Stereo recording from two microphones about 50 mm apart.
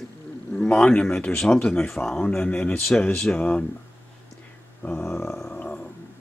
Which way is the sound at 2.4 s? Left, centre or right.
Left.